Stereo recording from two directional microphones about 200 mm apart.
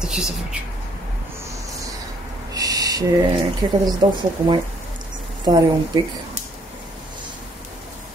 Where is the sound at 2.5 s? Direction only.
20° right (ahead or behind).